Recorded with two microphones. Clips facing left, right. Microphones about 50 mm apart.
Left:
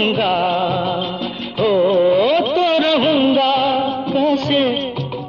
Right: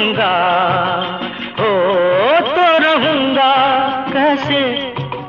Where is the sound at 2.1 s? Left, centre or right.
Right.